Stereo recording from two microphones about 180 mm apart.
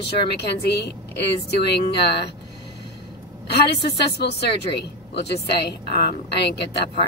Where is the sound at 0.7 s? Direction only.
70° left (ahead or behind).